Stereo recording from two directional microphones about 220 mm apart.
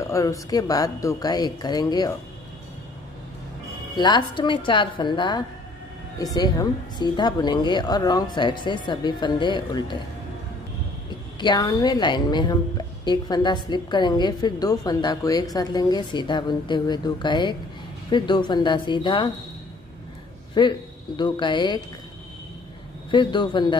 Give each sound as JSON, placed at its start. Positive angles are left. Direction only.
{"t": 0.0, "sound": "speech", "side_deg": 15}
{"t": 3.9, "sound": "a woman's voice", "side_deg": 20}
{"t": 11.3, "sound": "a woman's voice", "side_deg": 20}
{"t": 20.6, "sound": "a woman's voice", "side_deg": 20}
{"t": 23.1, "sound": "a woman's voice", "side_deg": 20}